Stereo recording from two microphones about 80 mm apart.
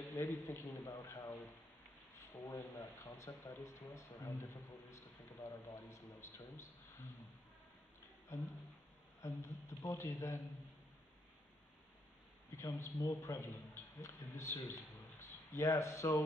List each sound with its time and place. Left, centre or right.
0.1 s speech: left
2.3 s speech: left
8.3 s speech: left
12.5 s a man's voice: left
14.7 s a sound: left